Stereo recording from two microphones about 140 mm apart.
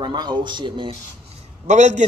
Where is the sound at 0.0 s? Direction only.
30° right (ahead or behind).